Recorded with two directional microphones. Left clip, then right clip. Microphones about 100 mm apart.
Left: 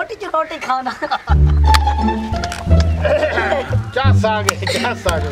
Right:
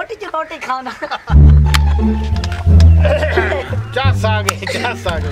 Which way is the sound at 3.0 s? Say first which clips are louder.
Even; 15° right (ahead or behind).